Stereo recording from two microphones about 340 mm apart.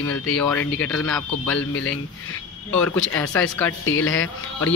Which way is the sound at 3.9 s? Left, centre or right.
Left.